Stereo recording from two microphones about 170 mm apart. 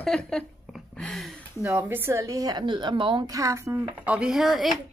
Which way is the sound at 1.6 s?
10° right (ahead or behind).